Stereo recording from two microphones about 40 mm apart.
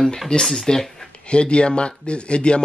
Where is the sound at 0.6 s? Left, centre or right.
Centre.